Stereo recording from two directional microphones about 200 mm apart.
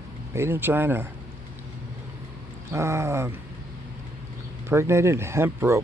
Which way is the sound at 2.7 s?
15° right (ahead or behind).